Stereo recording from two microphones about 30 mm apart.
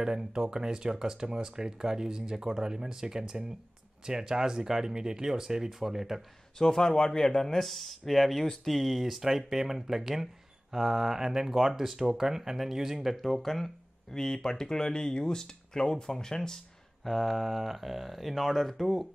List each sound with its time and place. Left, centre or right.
0.0 s speech: right
6.6 s speech: left; by 13.1 s centre
13.1 s speech: centre
14.1 s speech: centre
17.0 s speech: centre